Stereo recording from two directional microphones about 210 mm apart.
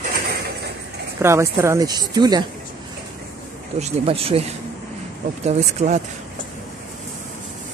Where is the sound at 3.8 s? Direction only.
25° right (ahead or behind).